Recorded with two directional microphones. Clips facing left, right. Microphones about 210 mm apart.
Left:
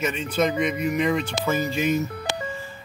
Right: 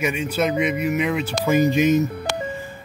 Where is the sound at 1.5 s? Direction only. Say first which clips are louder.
Right 7 dB; 15° right (ahead or behind).